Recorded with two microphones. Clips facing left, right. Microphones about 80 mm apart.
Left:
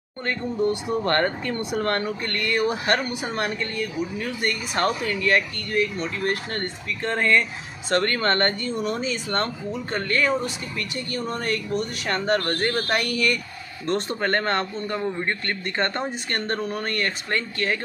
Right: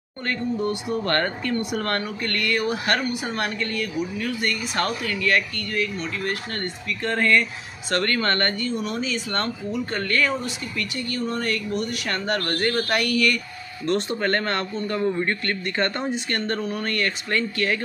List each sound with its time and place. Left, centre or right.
0.3 s speech: left
10.4 s speech: left
13.8 s speech: left
14.9 s speech: centre
15.4 s speech: left